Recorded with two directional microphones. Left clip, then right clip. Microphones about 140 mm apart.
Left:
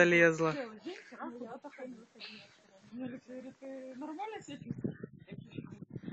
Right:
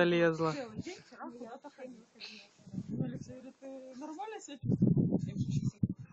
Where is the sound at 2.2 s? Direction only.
10° right (ahead or behind).